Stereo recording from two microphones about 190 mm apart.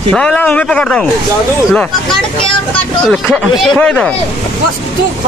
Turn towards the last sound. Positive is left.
turn(degrees=5)  # may be behind; listen again after turning